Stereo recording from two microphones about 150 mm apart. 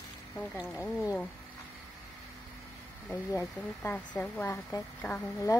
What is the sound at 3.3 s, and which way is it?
Speech, 15° left (ahead or behind).